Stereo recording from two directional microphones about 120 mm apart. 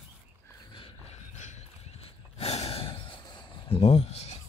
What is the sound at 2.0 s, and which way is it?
Gasp, 60° left (ahead or behind).